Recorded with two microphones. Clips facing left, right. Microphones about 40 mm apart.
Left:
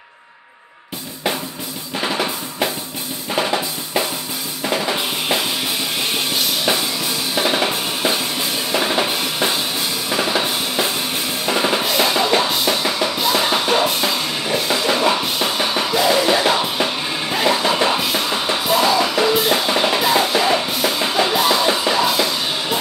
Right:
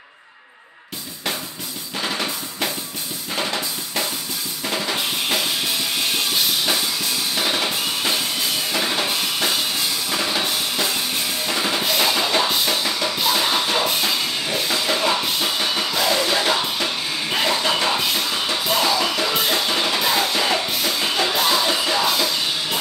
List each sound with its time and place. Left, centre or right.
2.0 s drum: centre
4.6 s drum kit: centre
7.3 s drum: centre
8.7 s drum kit: centre
10.0 s drum: centre
11.4 s drum kit: centre
11.8 s music: centre